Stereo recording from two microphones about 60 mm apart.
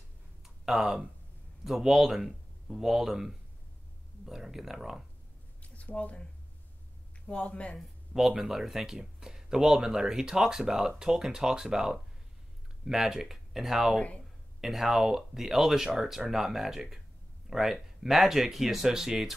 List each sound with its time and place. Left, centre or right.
0.4 s a sound: centre
1.6 s speech: centre
4.3 s speech: centre
5.6 s a sound: left
7.2 s speech: centre
8.1 s speech: centre
13.9 s speech: left
14.6 s speech: centre